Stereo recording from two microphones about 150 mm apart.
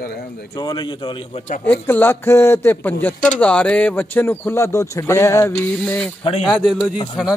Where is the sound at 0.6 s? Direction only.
30° left (ahead or behind).